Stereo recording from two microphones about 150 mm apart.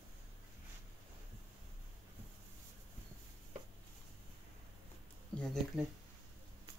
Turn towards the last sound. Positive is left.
turn(degrees=5)  # may be behind; listen again after turning